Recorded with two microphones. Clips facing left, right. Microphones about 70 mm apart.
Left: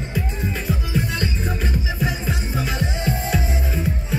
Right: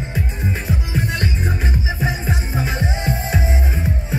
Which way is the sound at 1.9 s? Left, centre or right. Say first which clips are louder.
Right 2 dB; right.